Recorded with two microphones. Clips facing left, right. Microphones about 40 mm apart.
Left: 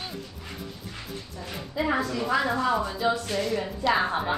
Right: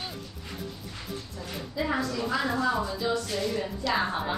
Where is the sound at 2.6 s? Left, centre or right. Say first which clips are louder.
Left 2 dB; centre.